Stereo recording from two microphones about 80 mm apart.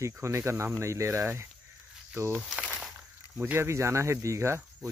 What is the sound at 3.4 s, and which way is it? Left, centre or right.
Speech, right.